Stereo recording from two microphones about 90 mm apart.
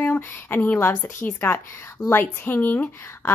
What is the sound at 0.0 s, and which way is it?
A woman's voice, 25° left (ahead or behind).